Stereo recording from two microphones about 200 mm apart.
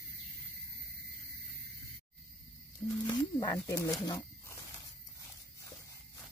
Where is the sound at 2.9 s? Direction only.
20° left (ahead or behind).